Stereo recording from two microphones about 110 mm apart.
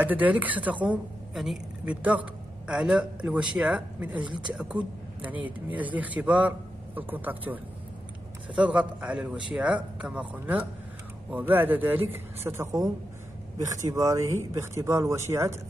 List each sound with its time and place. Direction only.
0.0 s a man's voice: 15° right (ahead or behind)
1.3 s a man's voice: 5° right (ahead or behind)
1.9 s a man's voice: 15° right (ahead or behind)
4.2 s speech: 45° right (ahead or behind)
4.6 s a man's voice: 10° right (ahead or behind)